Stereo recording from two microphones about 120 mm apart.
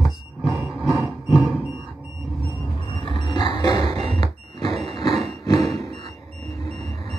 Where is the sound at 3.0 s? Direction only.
45° left (ahead or behind).